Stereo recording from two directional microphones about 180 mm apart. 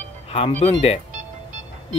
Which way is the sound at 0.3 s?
35° left (ahead or behind).